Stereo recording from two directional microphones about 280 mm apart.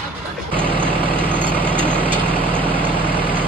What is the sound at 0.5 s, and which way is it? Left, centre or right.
Vehicle, centre.